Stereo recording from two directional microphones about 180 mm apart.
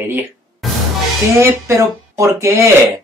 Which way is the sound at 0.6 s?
Centre (ahead or behind).